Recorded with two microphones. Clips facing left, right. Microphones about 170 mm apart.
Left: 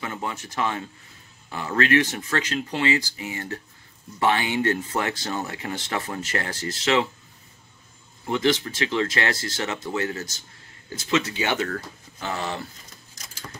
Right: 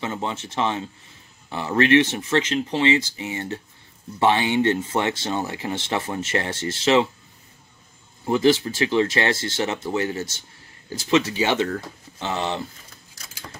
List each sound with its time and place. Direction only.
0.0 s speech: 25° right (ahead or behind)
8.3 s speech: 30° right (ahead or behind)